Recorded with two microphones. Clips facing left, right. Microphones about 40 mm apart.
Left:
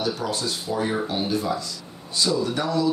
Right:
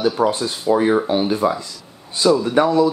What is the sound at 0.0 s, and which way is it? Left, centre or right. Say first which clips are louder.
Speech: right 8 dB; right.